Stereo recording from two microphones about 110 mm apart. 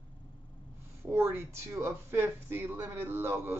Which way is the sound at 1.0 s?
20° right (ahead or behind).